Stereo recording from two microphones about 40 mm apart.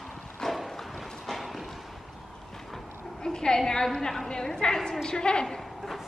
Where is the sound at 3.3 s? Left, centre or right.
Centre.